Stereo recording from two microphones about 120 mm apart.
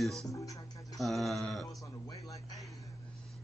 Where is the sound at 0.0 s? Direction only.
5° left (ahead or behind).